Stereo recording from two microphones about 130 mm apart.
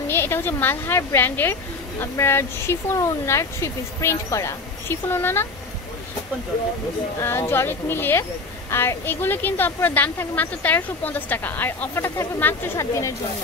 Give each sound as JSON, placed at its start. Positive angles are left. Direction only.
{"t": 0.1, "sound": "a woman's voice", "side_deg": 20}
{"t": 7.2, "sound": "speech", "side_deg": 20}